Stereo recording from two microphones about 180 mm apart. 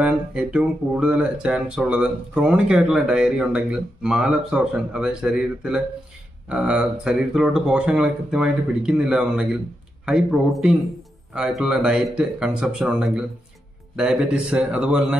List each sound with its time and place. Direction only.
0.0 s speech: 5° right (ahead or behind)